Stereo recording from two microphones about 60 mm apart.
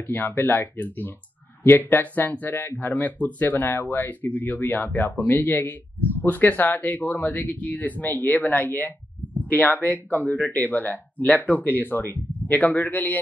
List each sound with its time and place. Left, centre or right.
0.1 s speech: left
4.0 s speech: left